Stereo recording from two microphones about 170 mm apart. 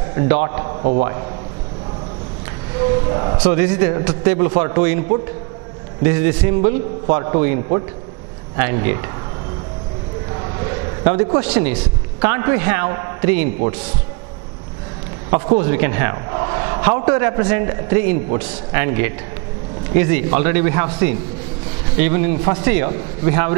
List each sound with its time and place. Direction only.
0.1 s a man's voice: 20° right (ahead or behind)
0.7 s a sound: 40° right (ahead or behind)
3.1 s a man's voice: 30° right (ahead or behind)
3.3 s a man's voice: 10° right (ahead or behind)
6.0 s a man's voice: 15° right (ahead or behind)
11.1 s a man's voice: 15° right (ahead or behind)
15.4 s a man's voice: 20° right (ahead or behind)